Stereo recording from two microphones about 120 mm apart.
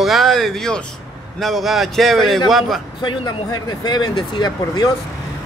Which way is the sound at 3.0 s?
35° left (ahead or behind).